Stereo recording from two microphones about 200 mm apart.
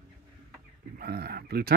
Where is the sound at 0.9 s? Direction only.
50° right (ahead or behind).